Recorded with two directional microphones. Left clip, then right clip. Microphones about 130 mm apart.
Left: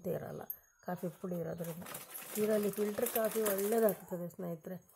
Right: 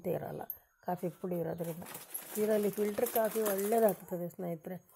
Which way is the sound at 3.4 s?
15° right (ahead or behind).